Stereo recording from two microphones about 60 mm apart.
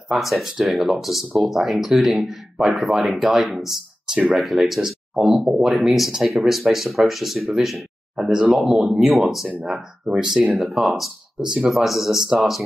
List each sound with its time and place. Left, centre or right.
0.1 s speech: centre
8.3 s speech: centre
10.0 s speech: centre